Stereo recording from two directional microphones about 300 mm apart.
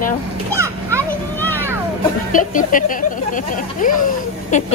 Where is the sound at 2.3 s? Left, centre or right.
Left.